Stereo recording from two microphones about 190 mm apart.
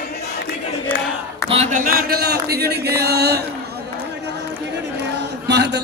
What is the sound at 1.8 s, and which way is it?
Speech, 50° right (ahead or behind).